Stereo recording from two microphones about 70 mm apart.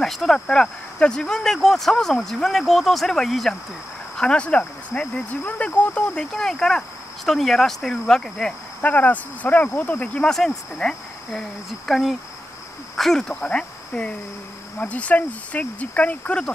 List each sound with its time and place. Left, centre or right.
0.0 s speech: centre
4.2 s speech: centre
8.8 s speech: left